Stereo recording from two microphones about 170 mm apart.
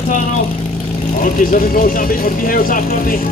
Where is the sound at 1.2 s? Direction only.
55° left (ahead or behind).